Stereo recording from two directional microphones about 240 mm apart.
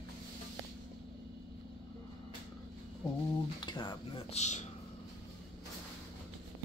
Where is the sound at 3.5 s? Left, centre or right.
Centre.